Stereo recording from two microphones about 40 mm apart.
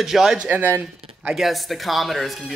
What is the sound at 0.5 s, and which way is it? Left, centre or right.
Speech, right.